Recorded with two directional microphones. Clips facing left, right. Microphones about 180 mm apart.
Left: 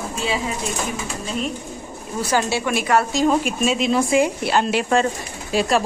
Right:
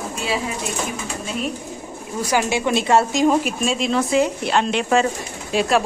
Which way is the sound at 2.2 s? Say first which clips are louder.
Right 1 dB; 15° right (ahead or behind).